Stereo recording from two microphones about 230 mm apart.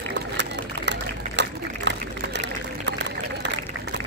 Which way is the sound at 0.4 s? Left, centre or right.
Right.